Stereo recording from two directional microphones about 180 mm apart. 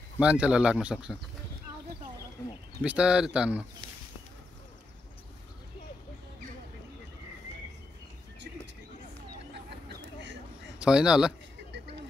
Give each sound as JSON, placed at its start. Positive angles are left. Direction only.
{"t": 0.2, "sound": "speech", "side_deg": -5}
{"t": 2.8, "sound": "speech", "side_deg": -5}
{"t": 9.5, "sound": "vehicle", "side_deg": -70}
{"t": 10.8, "sound": "speech", "side_deg": -5}